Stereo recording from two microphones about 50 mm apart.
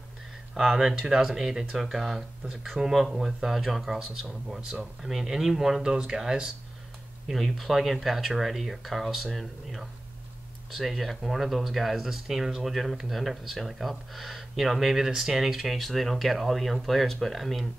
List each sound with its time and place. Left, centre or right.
0.6 s speech: centre
7.2 s speech: centre